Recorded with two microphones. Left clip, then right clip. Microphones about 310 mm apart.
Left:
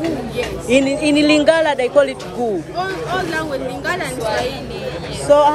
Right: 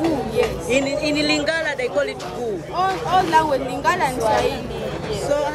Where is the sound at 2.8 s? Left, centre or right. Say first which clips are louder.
Right 6 dB; centre.